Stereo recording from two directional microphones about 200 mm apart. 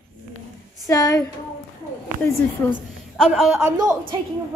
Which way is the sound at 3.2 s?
Centre (ahead or behind).